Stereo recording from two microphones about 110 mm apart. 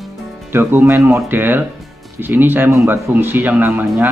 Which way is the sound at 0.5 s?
20° right (ahead or behind).